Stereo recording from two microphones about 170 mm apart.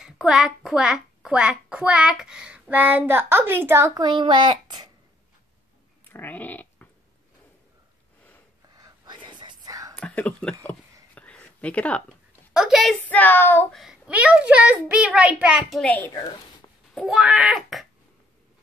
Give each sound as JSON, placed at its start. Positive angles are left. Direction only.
{"t": 0.0, "sound": "a child's voice", "side_deg": -5}
{"t": 6.1, "sound": "a sound", "side_deg": 10}
{"t": 8.6, "sound": "whispering", "side_deg": -20}
{"t": 9.9, "sound": "a sound", "side_deg": 5}
{"t": 12.5, "sound": "wail", "side_deg": 0}
{"t": 13.1, "sound": "child singing", "side_deg": 10}
{"t": 13.7, "sound": "a child's voice", "side_deg": -5}
{"t": 15.8, "sound": "child singing", "side_deg": 10}
{"t": 16.9, "sound": "wail", "side_deg": -5}